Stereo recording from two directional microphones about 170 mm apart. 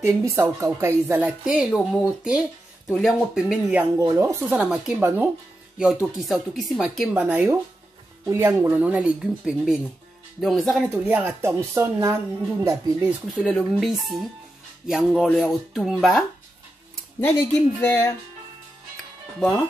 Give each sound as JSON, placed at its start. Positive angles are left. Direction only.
{"t": 0.0, "sound": "speech", "side_deg": -20}
{"t": 1.4, "sound": "speech", "side_deg": -5}
{"t": 4.0, "sound": "speech", "side_deg": -20}
{"t": 4.5, "sound": "speech", "side_deg": -5}
{"t": 7.2, "sound": "speech", "side_deg": -10}
{"t": 13.4, "sound": "speech", "side_deg": 0}